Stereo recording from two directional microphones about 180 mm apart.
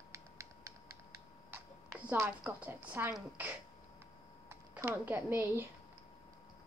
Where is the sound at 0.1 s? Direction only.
15° right (ahead or behind).